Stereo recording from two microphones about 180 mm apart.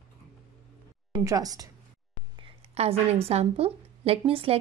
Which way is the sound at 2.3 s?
30° right (ahead or behind).